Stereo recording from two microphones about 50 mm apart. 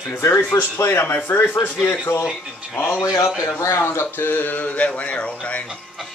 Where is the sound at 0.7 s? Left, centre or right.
Left.